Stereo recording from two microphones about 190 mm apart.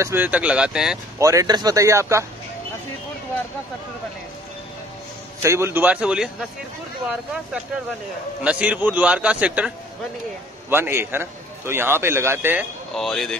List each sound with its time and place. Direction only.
0.0 s a man's voice: 10° right (ahead or behind)
1.1 s a man's voice: 15° right (ahead or behind)
5.4 s a man's voice: 15° right (ahead or behind)
8.4 s a man's voice: 5° right (ahead or behind)
10.7 s a man's voice: 15° right (ahead or behind)
12.9 s speech: centre (ahead or behind)